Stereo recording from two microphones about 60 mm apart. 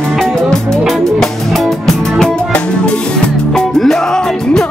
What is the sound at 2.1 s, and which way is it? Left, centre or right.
Music, centre.